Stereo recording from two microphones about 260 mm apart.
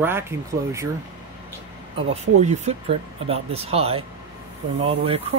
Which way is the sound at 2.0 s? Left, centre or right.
Right.